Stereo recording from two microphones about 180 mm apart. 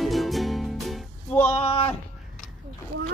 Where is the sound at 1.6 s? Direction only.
30° left (ahead or behind).